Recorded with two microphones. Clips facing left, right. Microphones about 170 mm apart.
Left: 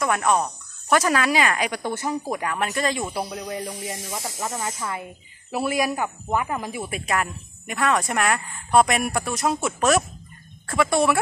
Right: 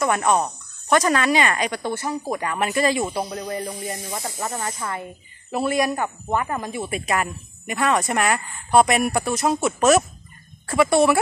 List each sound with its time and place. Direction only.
0.0 s speech: centre (ahead or behind)
1.7 s speech: 15° left (ahead or behind)
2.3 s speech: centre (ahead or behind)
3.1 s speech: 5° left (ahead or behind)